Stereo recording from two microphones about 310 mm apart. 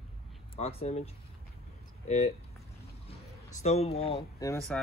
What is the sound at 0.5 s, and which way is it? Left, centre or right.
Speech, centre.